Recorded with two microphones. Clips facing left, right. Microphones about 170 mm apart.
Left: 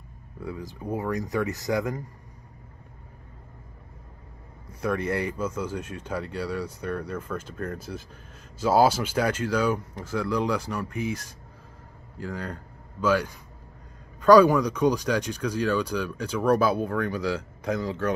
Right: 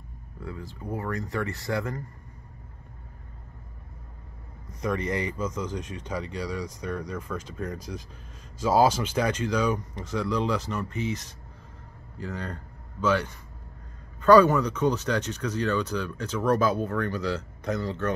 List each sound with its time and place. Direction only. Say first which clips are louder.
0.8 s speech: left 3 dB; 20° left (ahead or behind)
4.6 s speech: left 1 dB; 10° left (ahead or behind)